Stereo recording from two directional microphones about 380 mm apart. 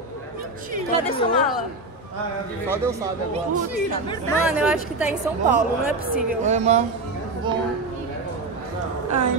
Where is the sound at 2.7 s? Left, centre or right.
Centre.